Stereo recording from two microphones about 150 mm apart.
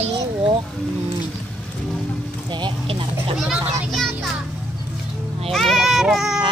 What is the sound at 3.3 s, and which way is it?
Children playing, centre (ahead or behind).